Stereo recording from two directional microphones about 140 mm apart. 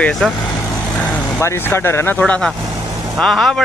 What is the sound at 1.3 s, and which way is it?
Speech, 15° left (ahead or behind).